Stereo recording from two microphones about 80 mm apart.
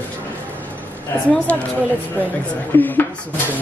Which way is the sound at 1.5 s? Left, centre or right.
Centre.